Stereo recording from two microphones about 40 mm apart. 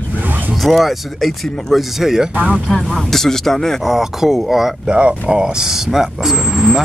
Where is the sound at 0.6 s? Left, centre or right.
Centre.